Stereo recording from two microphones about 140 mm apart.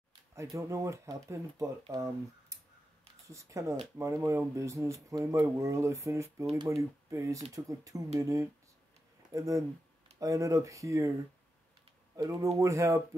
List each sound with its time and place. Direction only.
0.3 s speech: 20° right (ahead or behind)
3.3 s speech: 20° right (ahead or behind)
12.2 s speech: 25° right (ahead or behind)